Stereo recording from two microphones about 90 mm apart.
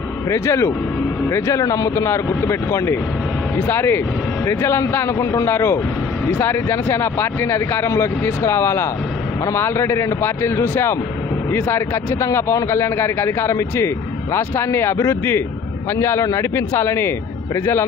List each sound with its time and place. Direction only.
0.3 s a man's voice: 35° left (ahead or behind)